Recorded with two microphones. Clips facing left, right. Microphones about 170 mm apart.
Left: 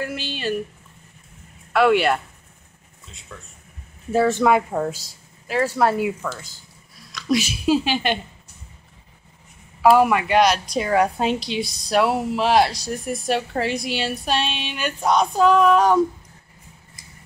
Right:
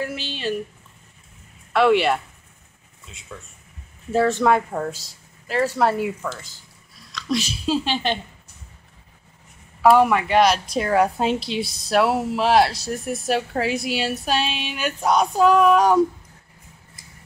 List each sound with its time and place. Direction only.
0.0 s a woman's voice: centre (ahead or behind)
1.7 s a woman's voice: centre (ahead or behind)
3.3 s a woman's voice: 5° right (ahead or behind)
9.8 s a woman's voice: 5° left (ahead or behind)
15.0 s female singing: 5° right (ahead or behind)